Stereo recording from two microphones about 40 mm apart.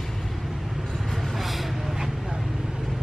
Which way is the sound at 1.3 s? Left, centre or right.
Centre.